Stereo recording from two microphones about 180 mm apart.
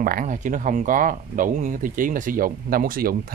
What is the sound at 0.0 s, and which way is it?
A man's voice, 50° right (ahead or behind).